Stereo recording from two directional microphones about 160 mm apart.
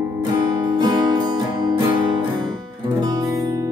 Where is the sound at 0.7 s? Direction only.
30° right (ahead or behind).